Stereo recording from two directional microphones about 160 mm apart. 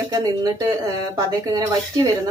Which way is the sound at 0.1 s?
25° right (ahead or behind).